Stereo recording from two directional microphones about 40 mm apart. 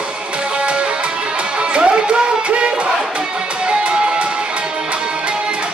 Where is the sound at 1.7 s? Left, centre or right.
Right.